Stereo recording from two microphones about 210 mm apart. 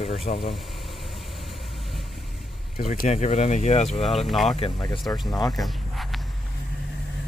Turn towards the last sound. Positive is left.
turn(degrees=0)  # may be behind; listen again after turning